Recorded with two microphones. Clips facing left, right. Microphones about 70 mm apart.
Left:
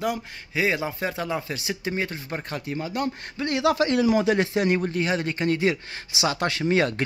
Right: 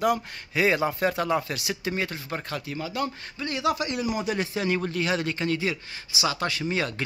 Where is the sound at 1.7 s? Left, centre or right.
Left.